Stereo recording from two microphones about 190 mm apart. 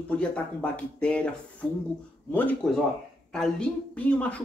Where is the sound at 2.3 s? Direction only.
5° left (ahead or behind).